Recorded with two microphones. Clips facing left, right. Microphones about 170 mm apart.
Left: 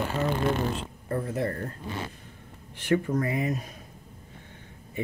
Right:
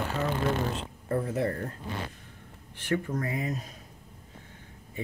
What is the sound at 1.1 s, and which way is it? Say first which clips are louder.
Speech: right 1 dB; 25° right (ahead or behind).